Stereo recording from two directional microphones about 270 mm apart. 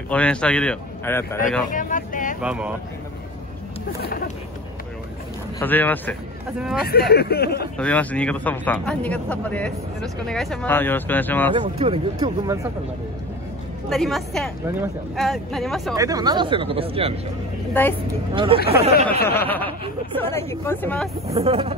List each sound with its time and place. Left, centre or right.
0.1 s speech: centre
1.7 s speech: left
2.4 s speech: centre
4.0 s speech: left
5.6 s speech: centre
6.9 s speech: left
7.7 s speech: centre
11.5 s speech: centre
13.8 s speech: centre
15.9 s speech: centre
18.3 s speech: centre
18.6 s speech: left
19.2 s speech: centre
21.3 s speech: right